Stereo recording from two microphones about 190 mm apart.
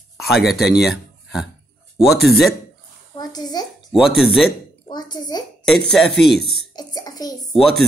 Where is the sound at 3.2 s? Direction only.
20° left (ahead or behind).